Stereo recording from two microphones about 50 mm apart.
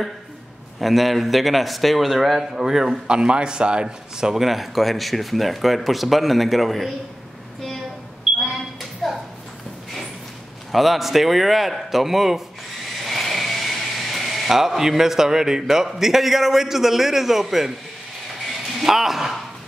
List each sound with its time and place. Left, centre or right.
0.7 s a man's voice: centre
8.4 s a sound: centre
10.7 s a man's voice: centre